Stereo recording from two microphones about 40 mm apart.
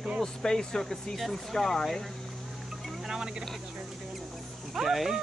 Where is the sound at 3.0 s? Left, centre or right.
Centre.